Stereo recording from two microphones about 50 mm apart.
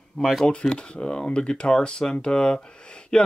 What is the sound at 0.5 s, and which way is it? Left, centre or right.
Speech, centre.